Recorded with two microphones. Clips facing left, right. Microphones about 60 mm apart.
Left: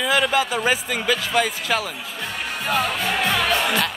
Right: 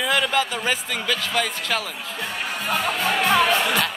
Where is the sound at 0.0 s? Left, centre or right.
Centre.